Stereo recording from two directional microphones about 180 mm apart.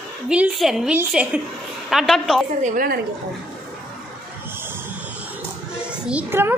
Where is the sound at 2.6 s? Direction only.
50° right (ahead or behind).